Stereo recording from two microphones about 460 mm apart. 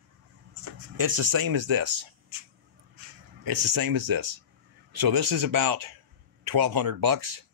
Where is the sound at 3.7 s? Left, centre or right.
Right.